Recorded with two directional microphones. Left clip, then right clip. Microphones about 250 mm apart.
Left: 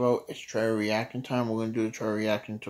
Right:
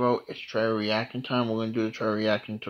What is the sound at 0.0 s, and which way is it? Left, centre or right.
Speech, centre.